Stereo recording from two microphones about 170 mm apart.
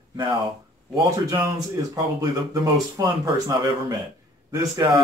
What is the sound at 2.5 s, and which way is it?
Speech, 20° right (ahead or behind).